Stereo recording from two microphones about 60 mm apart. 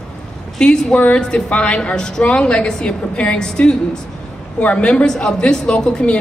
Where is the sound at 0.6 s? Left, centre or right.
Centre.